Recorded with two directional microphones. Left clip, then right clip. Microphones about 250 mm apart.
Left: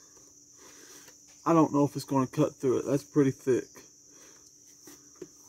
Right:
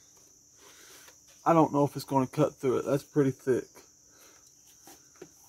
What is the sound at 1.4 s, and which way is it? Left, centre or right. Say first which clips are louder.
Speech: right 1 dB; centre.